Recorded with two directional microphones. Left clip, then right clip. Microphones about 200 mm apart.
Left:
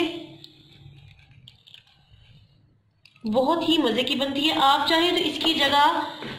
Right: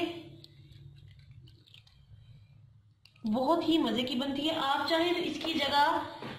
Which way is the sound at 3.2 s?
20° left (ahead or behind).